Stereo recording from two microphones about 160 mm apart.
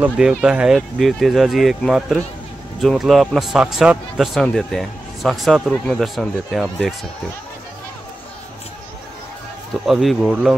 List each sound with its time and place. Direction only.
0.0 s a man's voice: 5° right (ahead or behind)
9.8 s a man's voice: centre (ahead or behind)